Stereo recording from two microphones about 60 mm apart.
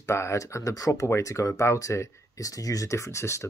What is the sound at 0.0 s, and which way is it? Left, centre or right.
Speech, left.